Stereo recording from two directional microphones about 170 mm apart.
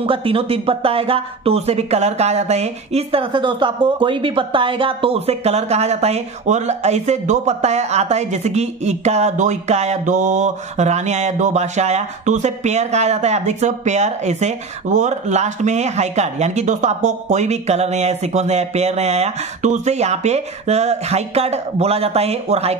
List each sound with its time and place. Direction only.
0.0 s speech: 35° right (ahead or behind)